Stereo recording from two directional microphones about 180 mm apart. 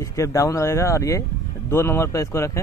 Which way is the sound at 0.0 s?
15° left (ahead or behind).